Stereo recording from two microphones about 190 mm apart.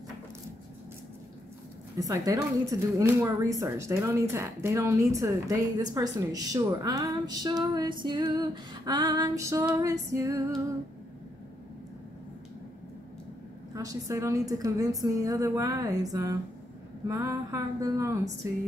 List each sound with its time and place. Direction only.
2.0 s speech: 15° right (ahead or behind)
13.7 s a woman's voice: 20° right (ahead or behind)